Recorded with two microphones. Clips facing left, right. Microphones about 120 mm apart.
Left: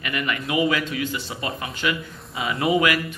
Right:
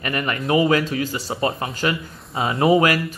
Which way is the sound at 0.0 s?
40° right (ahead or behind).